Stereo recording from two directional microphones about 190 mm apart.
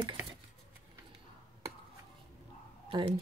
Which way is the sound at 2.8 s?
25° right (ahead or behind).